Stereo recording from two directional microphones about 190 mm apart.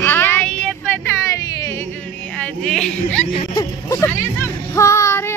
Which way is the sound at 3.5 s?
15° left (ahead or behind).